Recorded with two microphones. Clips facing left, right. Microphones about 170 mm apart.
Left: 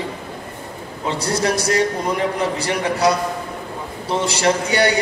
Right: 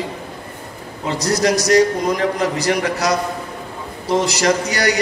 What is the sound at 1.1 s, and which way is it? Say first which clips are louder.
A man's voice: right 4 dB; 30° left (ahead or behind).